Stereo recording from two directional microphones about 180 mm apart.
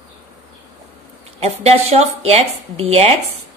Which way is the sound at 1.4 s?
35° right (ahead or behind).